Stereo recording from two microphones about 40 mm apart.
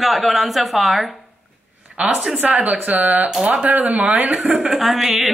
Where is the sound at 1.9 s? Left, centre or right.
Right.